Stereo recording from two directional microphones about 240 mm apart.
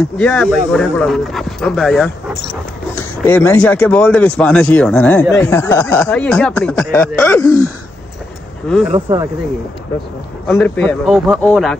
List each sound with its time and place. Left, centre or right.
0.0 s speech: centre
8.9 s speech: right
10.4 s speech: centre